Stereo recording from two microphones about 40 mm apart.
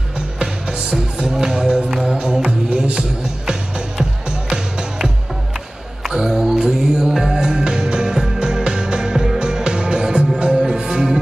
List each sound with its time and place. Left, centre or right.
0.4 s music: centre